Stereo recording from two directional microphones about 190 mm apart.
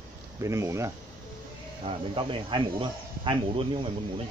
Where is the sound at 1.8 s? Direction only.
25° right (ahead or behind).